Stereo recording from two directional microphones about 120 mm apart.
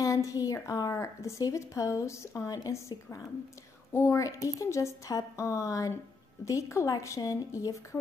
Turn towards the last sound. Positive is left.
turn(degrees=25)  # may be behind; listen again after turning